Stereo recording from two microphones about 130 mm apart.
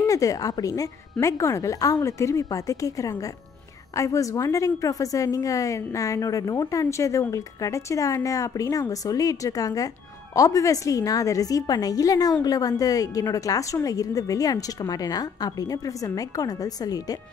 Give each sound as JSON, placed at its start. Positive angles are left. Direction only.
{"t": 0.0, "sound": "a woman's voice", "side_deg": 25}